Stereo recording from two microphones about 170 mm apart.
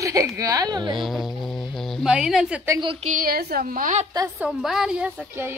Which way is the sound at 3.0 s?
55° right (ahead or behind).